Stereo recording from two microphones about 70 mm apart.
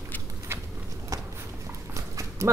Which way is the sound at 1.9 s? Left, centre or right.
Right.